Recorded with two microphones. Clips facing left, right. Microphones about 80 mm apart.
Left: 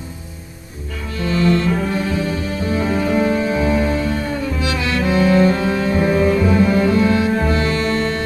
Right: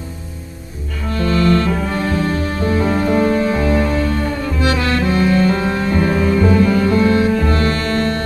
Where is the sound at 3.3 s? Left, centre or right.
Right.